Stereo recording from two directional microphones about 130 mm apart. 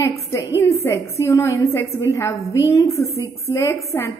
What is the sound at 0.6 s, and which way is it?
A woman's voice, 25° left (ahead or behind).